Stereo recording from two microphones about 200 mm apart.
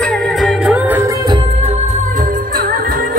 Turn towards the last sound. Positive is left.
turn(degrees=-45)  # may be behind; listen again after turning